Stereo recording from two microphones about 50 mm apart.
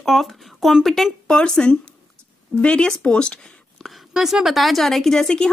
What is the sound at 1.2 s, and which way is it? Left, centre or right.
Speech, centre.